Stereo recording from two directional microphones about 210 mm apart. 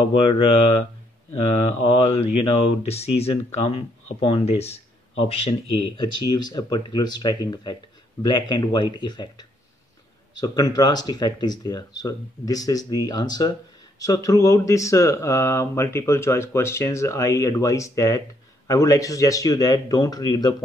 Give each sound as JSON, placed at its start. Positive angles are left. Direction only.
{"t": 0.1, "sound": "speech", "side_deg": 25}
{"t": 1.9, "sound": "speech", "side_deg": 30}